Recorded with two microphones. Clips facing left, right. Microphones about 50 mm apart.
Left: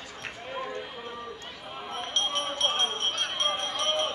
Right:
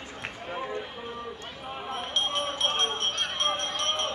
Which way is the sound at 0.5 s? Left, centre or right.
Centre.